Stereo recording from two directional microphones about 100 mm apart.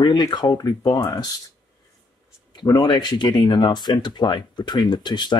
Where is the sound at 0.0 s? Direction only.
45° left (ahead or behind).